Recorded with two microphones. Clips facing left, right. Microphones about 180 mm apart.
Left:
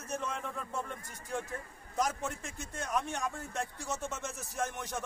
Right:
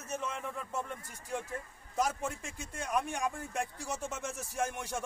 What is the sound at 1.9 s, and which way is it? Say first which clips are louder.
A man's voice: right 1 dB; 5° right (ahead or behind).